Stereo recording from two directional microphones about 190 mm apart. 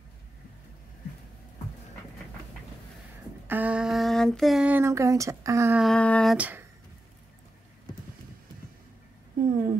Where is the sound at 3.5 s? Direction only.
5° right (ahead or behind).